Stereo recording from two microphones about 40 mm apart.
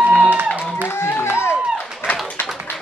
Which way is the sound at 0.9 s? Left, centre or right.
Left.